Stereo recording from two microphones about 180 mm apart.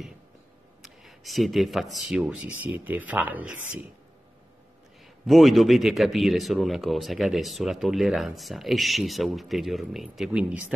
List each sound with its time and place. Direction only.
0.8 s a man's voice: centre (ahead or behind)
5.2 s a man's voice: centre (ahead or behind)